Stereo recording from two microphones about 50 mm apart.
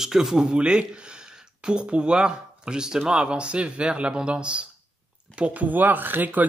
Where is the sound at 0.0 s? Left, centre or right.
Centre.